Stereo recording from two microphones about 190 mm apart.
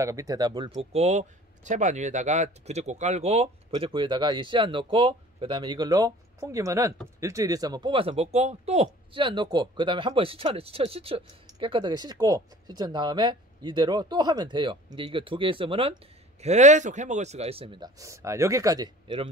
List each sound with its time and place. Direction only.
0.0 s speech: 15° right (ahead or behind)
0.9 s speech: 35° right (ahead or behind); by 19.2 s 20° right (ahead or behind)